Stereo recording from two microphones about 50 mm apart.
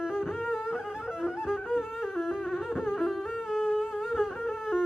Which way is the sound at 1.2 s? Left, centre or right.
Centre.